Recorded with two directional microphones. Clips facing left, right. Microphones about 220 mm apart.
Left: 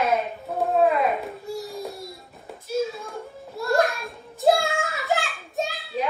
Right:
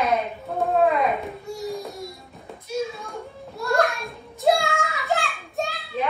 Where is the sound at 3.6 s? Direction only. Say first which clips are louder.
Even; centre (ahead or behind).